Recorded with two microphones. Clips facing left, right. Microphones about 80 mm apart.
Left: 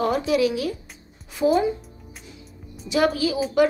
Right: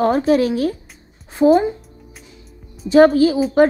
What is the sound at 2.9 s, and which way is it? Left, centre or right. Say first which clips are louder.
Speech: right 10 dB; right.